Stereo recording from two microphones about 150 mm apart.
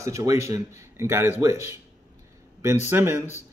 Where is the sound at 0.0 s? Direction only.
20° right (ahead or behind).